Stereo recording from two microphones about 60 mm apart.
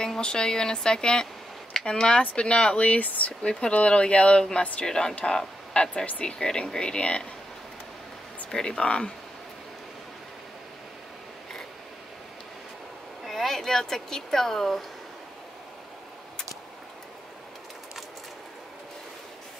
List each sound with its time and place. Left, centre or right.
0.0 s speech: centre
8.5 s speech: centre
13.2 s speech: centre